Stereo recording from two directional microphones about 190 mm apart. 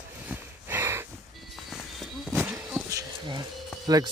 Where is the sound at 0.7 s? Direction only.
10° right (ahead or behind).